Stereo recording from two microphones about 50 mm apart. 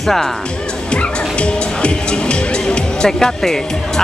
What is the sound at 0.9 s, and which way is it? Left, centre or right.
Music, left.